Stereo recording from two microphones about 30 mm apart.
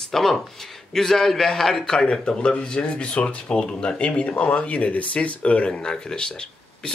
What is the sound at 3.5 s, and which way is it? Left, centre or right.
Speech, left.